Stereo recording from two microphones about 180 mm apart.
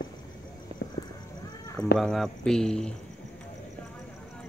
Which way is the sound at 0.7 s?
30° right (ahead or behind).